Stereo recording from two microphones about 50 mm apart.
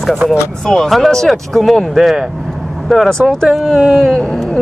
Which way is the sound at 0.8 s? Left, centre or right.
Centre.